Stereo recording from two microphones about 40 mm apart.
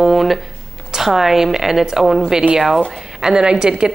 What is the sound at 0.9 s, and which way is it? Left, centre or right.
A woman's voice, centre.